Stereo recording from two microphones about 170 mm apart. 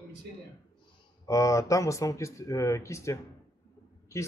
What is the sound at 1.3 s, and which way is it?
A man's voice, 20° left (ahead or behind).